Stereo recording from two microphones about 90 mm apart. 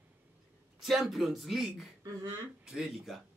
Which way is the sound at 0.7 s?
Centre (ahead or behind).